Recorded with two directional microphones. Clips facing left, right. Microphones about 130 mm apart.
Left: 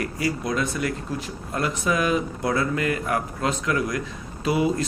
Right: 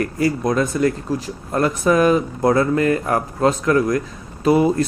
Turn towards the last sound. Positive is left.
turn(degrees=-50)  # may be behind; listen again after turning